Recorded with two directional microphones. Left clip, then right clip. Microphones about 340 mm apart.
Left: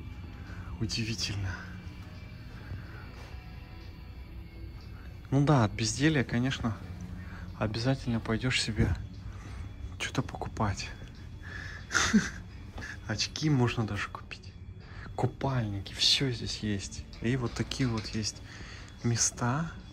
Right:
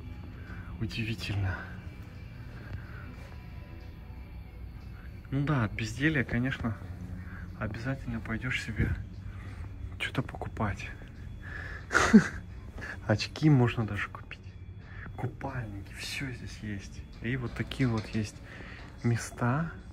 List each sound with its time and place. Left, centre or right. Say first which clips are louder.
0.7 s speech: left 3 dB; centre
5.3 s speech: left 5 dB; centre
9.9 s speech: even; centre
11.4 s a sound: right 1 dB; centre
13.3 s speech: right 3 dB; centre
15.3 s speech: left 5 dB; left
17.2 s speech: left 3 dB; centre